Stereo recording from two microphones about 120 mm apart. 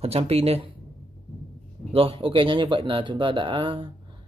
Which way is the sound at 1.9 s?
50° right (ahead or behind).